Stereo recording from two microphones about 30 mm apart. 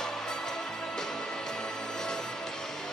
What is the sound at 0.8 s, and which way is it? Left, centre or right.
Music, centre.